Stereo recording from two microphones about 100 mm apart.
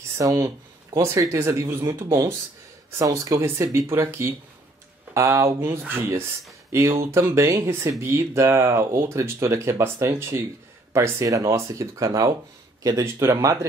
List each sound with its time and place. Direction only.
0.2 s speech: 35° right (ahead or behind)